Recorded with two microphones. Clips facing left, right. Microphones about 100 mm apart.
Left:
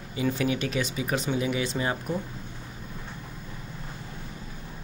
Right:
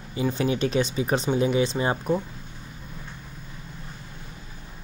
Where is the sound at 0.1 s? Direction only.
30° right (ahead or behind).